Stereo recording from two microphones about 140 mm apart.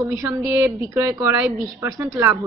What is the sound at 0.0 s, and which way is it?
A woman's voice, 20° right (ahead or behind).